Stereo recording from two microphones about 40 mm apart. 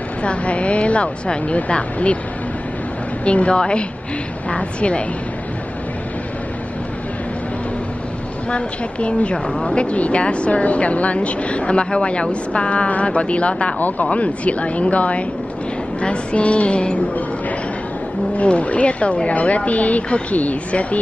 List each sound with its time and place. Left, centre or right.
0.2 s speech: left
3.3 s a woman's voice: left
8.5 s a woman's voice: left
13.7 s speech: left
14.1 s a woman's voice: left
18.3 s speech: left